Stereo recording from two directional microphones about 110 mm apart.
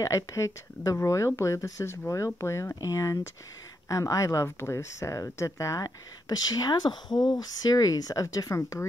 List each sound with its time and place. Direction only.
0.0 s speech: 30° left (ahead or behind)